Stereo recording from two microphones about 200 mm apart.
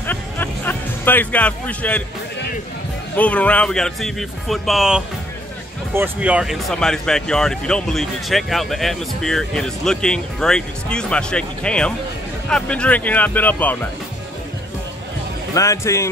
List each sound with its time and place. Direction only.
0.0 s music: 10° left (ahead or behind)
3.2 s speech: 5° left (ahead or behind)
15.5 s speech: 15° left (ahead or behind)